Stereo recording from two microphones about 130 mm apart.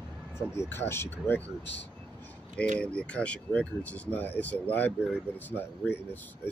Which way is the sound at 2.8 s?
10° left (ahead or behind).